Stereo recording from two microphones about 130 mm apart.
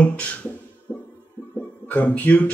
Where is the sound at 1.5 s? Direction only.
15° left (ahead or behind).